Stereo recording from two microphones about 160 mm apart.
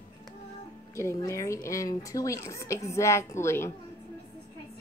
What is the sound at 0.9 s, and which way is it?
A woman's voice, 20° left (ahead or behind).